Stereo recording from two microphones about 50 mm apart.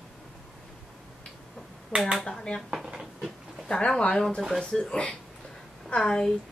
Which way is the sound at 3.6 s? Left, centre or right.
Centre.